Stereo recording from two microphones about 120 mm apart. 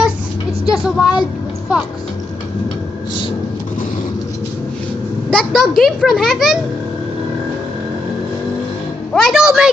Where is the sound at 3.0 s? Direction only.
40° left (ahead or behind).